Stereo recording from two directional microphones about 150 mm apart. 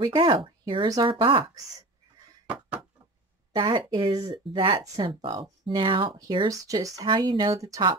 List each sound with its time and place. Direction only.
0.0 s speech: 35° right (ahead or behind)
3.5 s speech: 35° right (ahead or behind)